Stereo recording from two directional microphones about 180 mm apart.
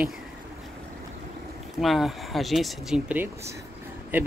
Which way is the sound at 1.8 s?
Centre (ahead or behind).